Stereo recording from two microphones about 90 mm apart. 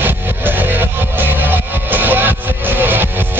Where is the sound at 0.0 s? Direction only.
20° right (ahead or behind).